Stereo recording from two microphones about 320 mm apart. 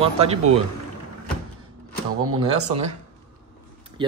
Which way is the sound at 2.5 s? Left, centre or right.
Right.